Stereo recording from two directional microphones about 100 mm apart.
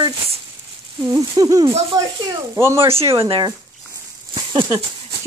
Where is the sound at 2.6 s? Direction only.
25° right (ahead or behind).